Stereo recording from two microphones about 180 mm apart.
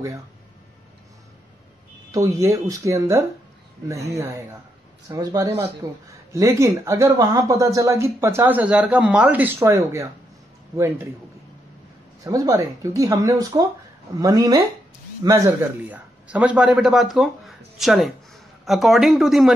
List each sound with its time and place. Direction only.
2.1 s speech: 15° right (ahead or behind)
12.2 s a man's voice: 20° right (ahead or behind); by 19.5 s centre (ahead or behind)